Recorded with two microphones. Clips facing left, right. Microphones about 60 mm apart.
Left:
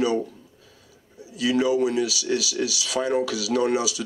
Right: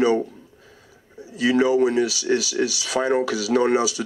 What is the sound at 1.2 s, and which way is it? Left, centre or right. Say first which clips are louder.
Speech: right 3 dB; right.